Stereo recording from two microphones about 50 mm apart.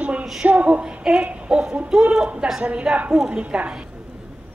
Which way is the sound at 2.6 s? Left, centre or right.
Right.